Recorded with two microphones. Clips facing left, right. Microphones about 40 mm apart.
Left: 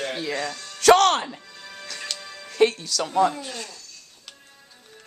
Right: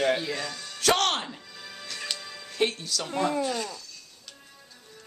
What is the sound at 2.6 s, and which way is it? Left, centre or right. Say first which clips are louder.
Speech: left 4 dB; left.